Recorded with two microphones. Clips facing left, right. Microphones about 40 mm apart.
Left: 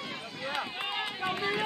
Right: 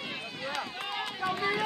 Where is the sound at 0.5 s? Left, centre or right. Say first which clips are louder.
Left 2 dB; left.